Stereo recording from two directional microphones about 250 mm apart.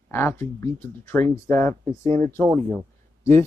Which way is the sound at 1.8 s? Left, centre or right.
Right.